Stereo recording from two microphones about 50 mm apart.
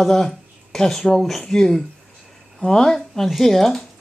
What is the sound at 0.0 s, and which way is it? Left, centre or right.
A man's voice, centre.